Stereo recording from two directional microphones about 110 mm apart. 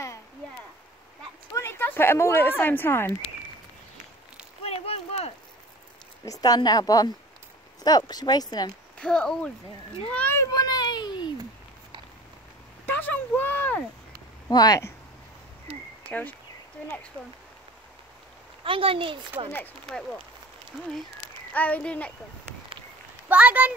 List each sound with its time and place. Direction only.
1.5 s speech: 25° left (ahead or behind)
4.6 s a sound: 70° left (ahead or behind)
6.2 s a woman's voice: 35° left (ahead or behind)
8.9 s speech: 10° left (ahead or behind)
10.3 s a sound: 35° left (ahead or behind)
12.8 s a sound: 15° left (ahead or behind)
14.5 s a woman's voice: 40° left (ahead or behind)
16.1 s speech: 15° left (ahead or behind)
18.6 s speech: 55° right (ahead or behind)
21.5 s speech: 15° left (ahead or behind)
23.2 s speech: 15° right (ahead or behind)